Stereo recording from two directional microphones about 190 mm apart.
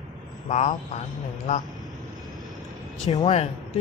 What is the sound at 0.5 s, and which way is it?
Speech, 35° left (ahead or behind).